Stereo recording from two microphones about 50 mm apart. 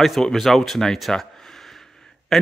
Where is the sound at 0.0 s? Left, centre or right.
Centre.